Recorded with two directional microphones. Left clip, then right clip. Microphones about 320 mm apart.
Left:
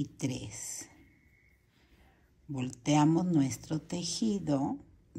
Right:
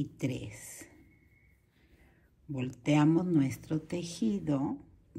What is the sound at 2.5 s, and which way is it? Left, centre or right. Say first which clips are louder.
Speech: even; centre.